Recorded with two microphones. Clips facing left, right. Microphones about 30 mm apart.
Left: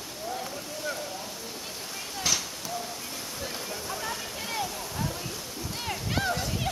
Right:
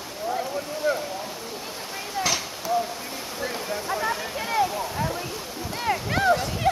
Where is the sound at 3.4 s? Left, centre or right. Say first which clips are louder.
Right 8 dB; right.